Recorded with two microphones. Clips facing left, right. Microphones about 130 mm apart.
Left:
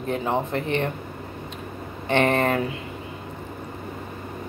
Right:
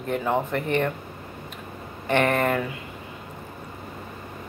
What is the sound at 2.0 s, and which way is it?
Speech, 25° left (ahead or behind).